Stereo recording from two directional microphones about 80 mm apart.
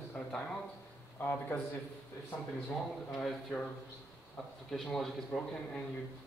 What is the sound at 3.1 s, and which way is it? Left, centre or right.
Speech, centre.